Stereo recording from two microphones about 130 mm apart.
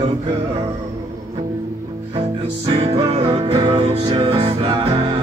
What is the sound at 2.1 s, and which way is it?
Music, 45° right (ahead or behind).